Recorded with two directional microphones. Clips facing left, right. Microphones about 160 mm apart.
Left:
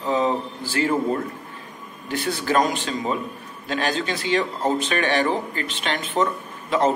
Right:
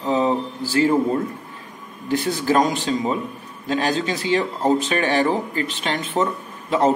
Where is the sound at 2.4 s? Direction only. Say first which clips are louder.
Right 1 dB; 30° right (ahead or behind).